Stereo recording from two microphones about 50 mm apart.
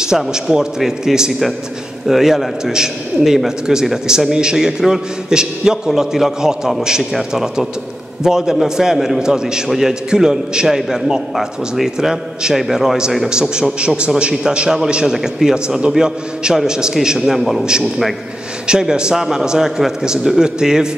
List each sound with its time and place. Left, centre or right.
0.0 s a man's voice: centre
18.7 s a man's voice: centre